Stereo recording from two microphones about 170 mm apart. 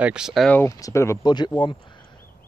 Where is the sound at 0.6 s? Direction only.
20° left (ahead or behind).